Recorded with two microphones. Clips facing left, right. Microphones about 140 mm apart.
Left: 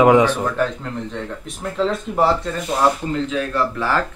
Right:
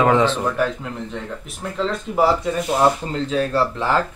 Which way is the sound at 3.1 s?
35° right (ahead or behind).